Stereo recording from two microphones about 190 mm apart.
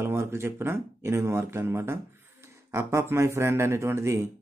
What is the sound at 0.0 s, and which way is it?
Speech, 15° right (ahead or behind).